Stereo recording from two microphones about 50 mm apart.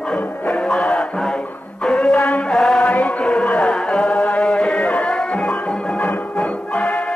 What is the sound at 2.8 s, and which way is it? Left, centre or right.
Music, left.